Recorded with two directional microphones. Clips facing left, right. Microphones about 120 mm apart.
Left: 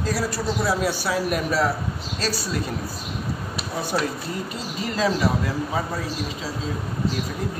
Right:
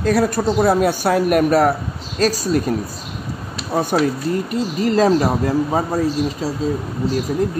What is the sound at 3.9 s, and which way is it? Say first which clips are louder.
Speech: right 7 dB; 60° right (ahead or behind).